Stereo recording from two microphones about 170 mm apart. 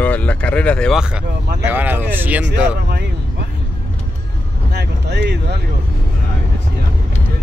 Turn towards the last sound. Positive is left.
turn(degrees=-75)  # may be behind; listen again after turning